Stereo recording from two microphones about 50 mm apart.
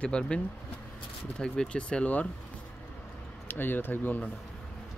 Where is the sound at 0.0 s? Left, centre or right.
Left.